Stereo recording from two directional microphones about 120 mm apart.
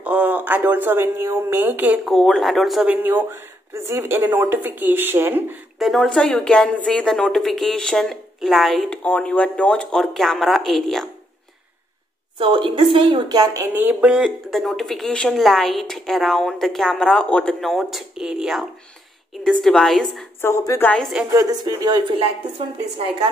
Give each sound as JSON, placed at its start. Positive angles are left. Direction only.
{"t": 0.0, "sound": "speech", "side_deg": -10}
{"t": 2.0, "sound": "a woman's voice", "side_deg": 0}
{"t": 2.9, "sound": "speech", "side_deg": -15}
{"t": 5.8, "sound": "a woman's voice", "side_deg": 0}
{"t": 9.0, "sound": "a woman's voice", "side_deg": 10}
{"t": 12.4, "sound": "a woman's voice", "side_deg": -45}
{"t": 13.3, "sound": "a woman's voice", "side_deg": -30}
{"t": 13.6, "sound": "speech", "side_deg": -15}
{"t": 14.1, "sound": "a woman's voice", "side_deg": 0}
{"t": 20.4, "sound": "a woman's voice", "side_deg": 25}
{"t": 20.8, "sound": "a woman's voice", "side_deg": 10}
{"t": 21.3, "sound": "a woman's voice", "side_deg": -30}